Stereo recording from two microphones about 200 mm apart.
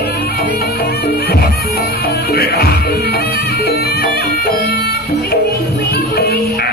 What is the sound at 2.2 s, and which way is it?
Music, 50° left (ahead or behind).